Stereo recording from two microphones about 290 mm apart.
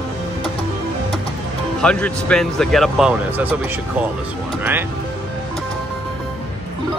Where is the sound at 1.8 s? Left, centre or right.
Centre.